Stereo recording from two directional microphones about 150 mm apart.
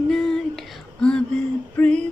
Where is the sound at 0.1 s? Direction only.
5° left (ahead or behind).